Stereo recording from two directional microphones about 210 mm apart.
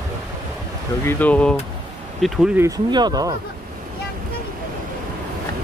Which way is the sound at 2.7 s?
20° right (ahead or behind).